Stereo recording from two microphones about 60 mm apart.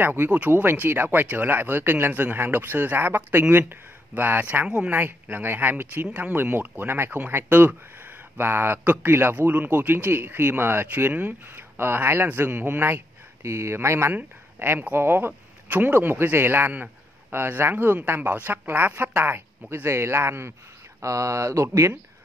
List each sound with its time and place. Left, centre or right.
0.0 s speech: right
4.9 s speech: right
13.4 s speech: right
21.0 s speech: right